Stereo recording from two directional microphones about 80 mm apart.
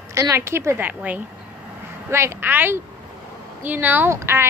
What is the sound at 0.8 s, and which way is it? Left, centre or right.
Speech, centre.